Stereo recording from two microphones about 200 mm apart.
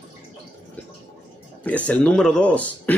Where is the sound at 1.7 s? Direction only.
5° left (ahead or behind).